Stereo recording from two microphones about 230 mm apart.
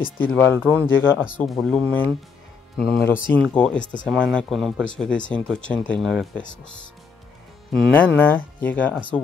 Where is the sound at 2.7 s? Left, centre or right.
Left.